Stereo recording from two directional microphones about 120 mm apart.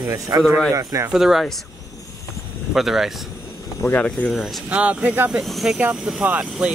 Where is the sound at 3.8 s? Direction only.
25° left (ahead or behind).